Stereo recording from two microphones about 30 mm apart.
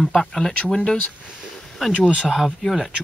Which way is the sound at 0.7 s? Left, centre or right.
Left.